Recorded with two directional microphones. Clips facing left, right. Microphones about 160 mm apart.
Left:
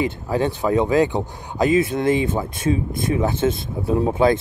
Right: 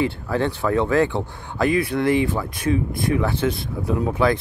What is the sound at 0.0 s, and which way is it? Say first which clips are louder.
Speech: left 1 dB; 15° left (ahead or behind).